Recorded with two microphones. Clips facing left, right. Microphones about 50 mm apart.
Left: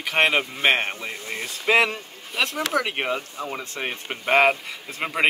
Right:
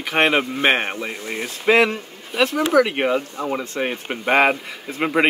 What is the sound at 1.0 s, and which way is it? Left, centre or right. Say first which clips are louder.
Speech: right 4 dB; right.